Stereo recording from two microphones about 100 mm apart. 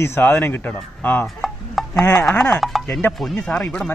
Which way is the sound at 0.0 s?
25° left (ahead or behind).